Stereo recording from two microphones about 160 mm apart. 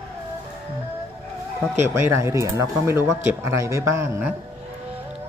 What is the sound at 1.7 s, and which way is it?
Speech, 15° right (ahead or behind).